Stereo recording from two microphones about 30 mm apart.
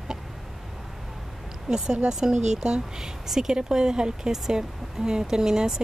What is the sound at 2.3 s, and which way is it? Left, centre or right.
Speech, right.